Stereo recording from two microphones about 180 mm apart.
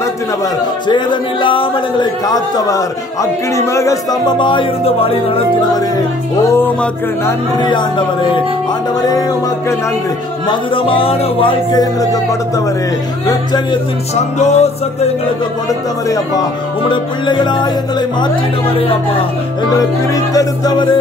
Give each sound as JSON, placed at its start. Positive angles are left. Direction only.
{"t": 0.8, "sound": "speech", "side_deg": 25}
{"t": 6.5, "sound": "speech", "side_deg": 10}
{"t": 10.5, "sound": "speech", "side_deg": 30}
{"t": 14.1, "sound": "music", "side_deg": 40}
{"t": 16.1, "sound": "speech", "side_deg": 25}
{"t": 20.3, "sound": "speech", "side_deg": 20}